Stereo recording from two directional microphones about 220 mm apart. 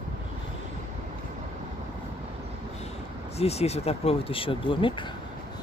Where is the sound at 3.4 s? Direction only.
30° left (ahead or behind).